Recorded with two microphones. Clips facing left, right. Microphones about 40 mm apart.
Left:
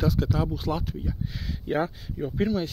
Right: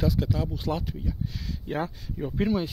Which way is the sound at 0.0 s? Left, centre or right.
Centre.